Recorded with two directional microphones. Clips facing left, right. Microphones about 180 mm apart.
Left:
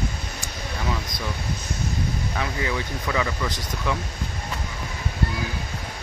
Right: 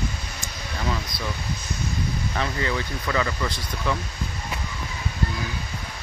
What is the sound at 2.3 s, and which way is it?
Speech, 10° left (ahead or behind).